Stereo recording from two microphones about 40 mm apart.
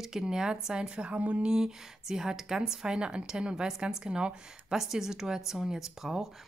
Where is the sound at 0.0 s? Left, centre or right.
Centre.